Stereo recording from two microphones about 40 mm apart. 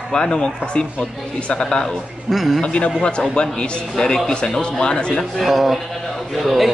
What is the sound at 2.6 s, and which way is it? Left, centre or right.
A man's voice, left.